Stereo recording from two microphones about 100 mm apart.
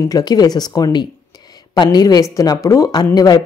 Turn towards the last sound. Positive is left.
turn(degrees=40)  # may be behind; listen again after turning